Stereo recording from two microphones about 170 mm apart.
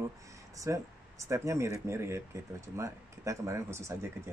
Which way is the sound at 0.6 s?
20° right (ahead or behind).